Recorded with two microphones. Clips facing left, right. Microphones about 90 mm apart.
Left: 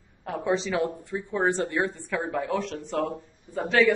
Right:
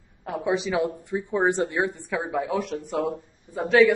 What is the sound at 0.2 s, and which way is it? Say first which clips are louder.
A woman's voice: right 1 dB; 10° right (ahead or behind).